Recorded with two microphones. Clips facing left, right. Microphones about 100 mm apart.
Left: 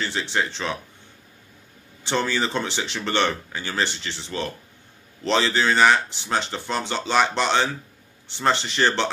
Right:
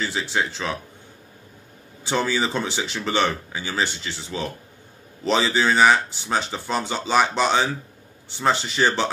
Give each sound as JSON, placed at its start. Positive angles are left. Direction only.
{"t": 0.0, "sound": "speech", "side_deg": -5}
{"t": 2.0, "sound": "speech", "side_deg": -5}